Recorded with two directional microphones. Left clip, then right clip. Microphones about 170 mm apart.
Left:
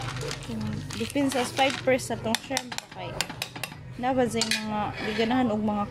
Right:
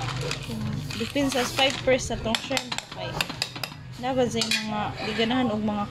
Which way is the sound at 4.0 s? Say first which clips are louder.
Even; 25° left (ahead or behind).